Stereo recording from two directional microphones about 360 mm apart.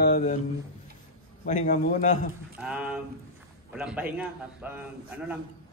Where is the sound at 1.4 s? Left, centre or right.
Left.